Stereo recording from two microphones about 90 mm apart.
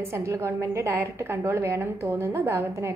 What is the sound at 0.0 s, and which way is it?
A woman's voice, 30° right (ahead or behind).